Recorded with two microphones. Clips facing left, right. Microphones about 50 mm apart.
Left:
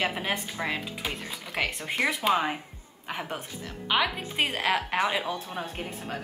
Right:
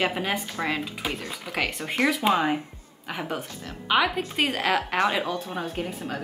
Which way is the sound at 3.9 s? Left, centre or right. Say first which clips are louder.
Right 4 dB; centre.